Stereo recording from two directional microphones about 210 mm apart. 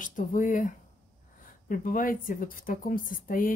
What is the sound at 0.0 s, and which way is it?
Speech, 40° left (ahead or behind).